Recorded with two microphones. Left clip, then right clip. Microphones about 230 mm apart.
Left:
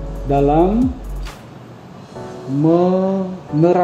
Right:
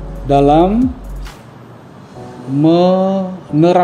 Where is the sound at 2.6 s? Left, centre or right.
Right.